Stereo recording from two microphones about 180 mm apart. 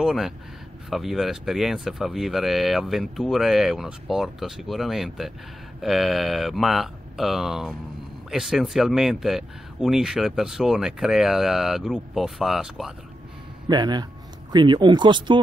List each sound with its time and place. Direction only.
0.0 s speech: centre (ahead or behind)
13.7 s speech: 25° right (ahead or behind)